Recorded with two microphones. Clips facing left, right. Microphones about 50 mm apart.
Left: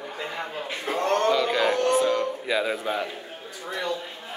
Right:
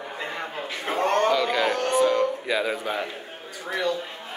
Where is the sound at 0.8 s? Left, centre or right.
Right.